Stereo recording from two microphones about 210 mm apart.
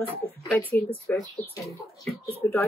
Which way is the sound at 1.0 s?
15° left (ahead or behind).